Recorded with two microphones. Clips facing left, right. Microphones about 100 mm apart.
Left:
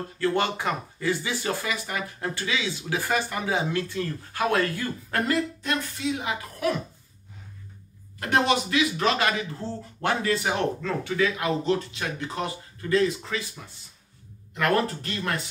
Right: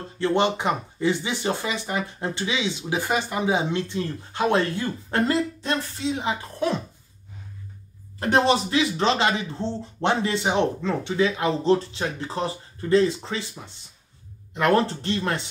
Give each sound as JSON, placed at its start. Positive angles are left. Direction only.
{"t": 0.2, "sound": "speech", "side_deg": -20}
{"t": 8.2, "sound": "speech", "side_deg": -30}